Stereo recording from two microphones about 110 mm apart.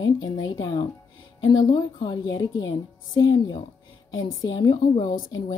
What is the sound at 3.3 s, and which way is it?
Speech, 45° left (ahead or behind).